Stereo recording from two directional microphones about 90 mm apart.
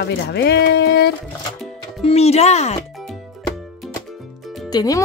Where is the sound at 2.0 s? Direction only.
90° left.